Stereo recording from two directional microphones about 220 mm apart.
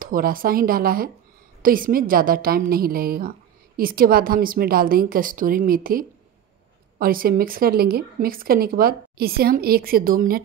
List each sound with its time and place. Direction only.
0.0 s a woman's voice: 40° right (ahead or behind)